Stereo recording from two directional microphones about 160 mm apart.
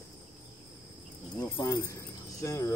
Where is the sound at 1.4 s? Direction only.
30° left (ahead or behind).